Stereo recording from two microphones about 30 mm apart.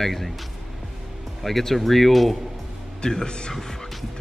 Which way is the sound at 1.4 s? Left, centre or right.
Centre.